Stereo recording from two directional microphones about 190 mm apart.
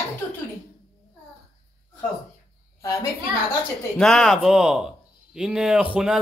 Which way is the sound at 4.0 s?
Centre (ahead or behind).